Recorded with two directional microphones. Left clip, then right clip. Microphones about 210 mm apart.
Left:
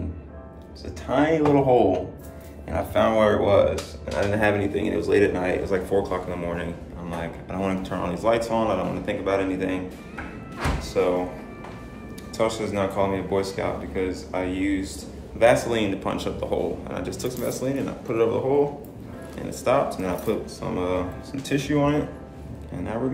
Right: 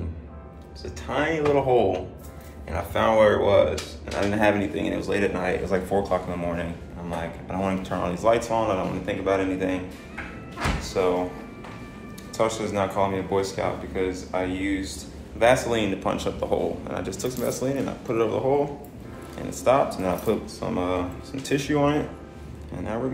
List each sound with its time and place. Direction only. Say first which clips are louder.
1.0 s speech: left 3 dB; 15° left (ahead or behind)
10.8 s music: left 1 dB; 10° left (ahead or behind)
12.4 s speech: even; 10° left (ahead or behind)
19.6 s speech: right 1 dB; 5° left (ahead or behind)